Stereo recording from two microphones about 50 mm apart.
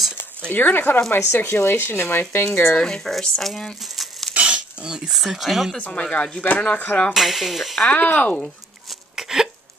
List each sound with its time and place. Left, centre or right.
0.5 s speech: left
1.2 s speech: left
2.8 s speech: centre
4.3 s a sound: right
4.8 s speech: centre
5.8 s speech: left
6.4 s speech: left
7.2 s speech: centre
7.8 s speech: left
9.1 s hiccup: centre